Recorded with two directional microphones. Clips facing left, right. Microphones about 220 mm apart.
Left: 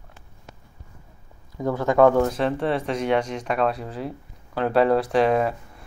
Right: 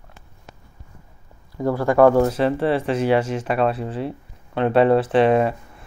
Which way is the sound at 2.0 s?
5° right (ahead or behind).